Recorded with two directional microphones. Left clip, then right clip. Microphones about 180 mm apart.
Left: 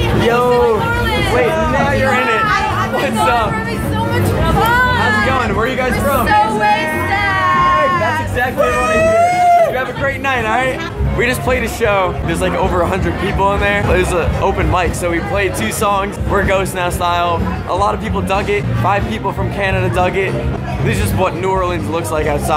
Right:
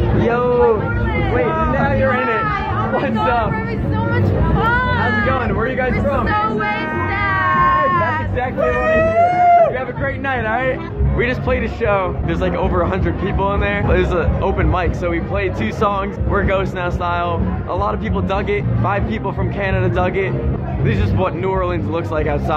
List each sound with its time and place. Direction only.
0.2 s hubbub: 25° left (ahead or behind)
2.0 s chatter: 5° left (ahead or behind)
4.6 s music: 30° left (ahead or behind)
5.2 s speech: 5° left (ahead or behind)
6.2 s music: 20° left (ahead or behind)
8.4 s speech: 5° left (ahead or behind)